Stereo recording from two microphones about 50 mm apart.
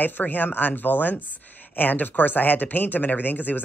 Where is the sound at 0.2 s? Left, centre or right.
Left.